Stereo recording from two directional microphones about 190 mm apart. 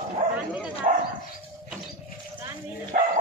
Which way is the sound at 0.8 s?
45° right (ahead or behind).